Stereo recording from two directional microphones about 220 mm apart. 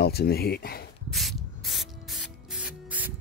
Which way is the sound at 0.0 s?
45° left (ahead or behind).